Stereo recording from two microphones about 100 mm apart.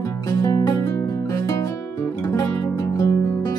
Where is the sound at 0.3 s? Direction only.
35° left (ahead or behind).